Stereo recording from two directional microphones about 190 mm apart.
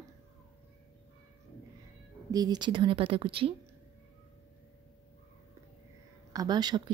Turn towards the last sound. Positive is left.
turn(degrees=-20)  # may be behind; listen again after turning